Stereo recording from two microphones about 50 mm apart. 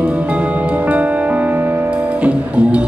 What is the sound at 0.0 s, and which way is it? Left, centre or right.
Music, right.